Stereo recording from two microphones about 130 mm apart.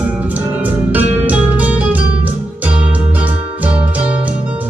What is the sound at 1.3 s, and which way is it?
Music, 10° right (ahead or behind).